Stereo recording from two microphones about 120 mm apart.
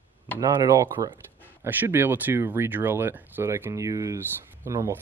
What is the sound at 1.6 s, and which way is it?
A man's voice, 20° right (ahead or behind).